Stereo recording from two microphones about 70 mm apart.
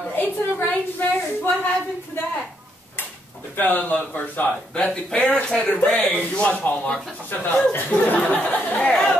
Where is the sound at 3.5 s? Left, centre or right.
Left.